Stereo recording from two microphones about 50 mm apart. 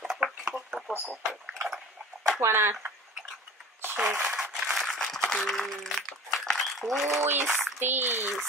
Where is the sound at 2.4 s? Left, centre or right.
Right.